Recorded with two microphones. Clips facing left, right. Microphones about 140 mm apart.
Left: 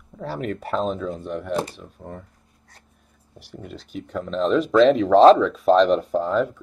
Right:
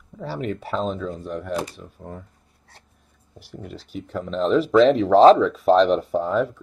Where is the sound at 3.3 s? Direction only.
Centre (ahead or behind).